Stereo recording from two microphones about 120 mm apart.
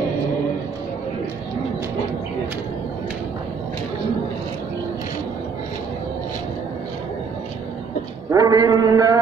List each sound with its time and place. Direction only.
8.3 s mantra: 30° right (ahead or behind)